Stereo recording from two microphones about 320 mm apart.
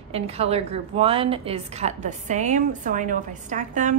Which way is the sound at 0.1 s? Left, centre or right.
Centre.